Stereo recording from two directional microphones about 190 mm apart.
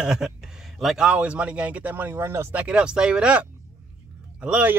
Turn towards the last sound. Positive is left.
turn(degrees=-5)  # may be behind; listen again after turning